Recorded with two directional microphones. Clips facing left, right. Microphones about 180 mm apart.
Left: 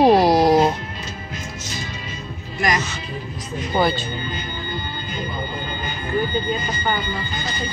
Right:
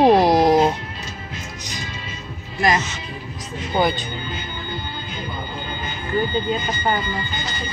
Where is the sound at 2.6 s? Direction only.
30° right (ahead or behind).